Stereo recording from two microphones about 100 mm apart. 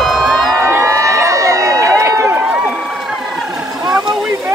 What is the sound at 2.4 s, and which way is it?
Crowd, 10° right (ahead or behind).